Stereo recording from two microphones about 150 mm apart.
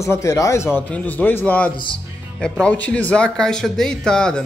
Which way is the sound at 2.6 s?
10° left (ahead or behind).